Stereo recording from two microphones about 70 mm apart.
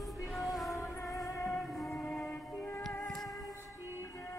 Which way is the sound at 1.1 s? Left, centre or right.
Left.